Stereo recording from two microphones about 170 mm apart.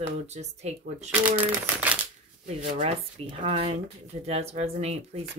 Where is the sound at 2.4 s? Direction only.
45° right (ahead or behind).